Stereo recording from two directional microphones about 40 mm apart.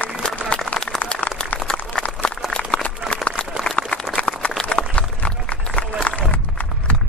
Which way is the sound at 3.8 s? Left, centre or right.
Left.